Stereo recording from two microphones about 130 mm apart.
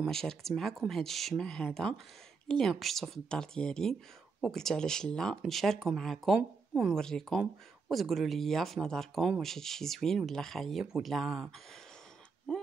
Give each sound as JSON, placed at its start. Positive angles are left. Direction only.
{"t": 0.0, "sound": "speech", "side_deg": 5}
{"t": 12.5, "sound": "speech", "side_deg": 5}